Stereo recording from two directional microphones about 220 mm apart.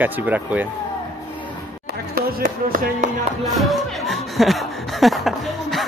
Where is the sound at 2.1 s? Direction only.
40° right (ahead or behind).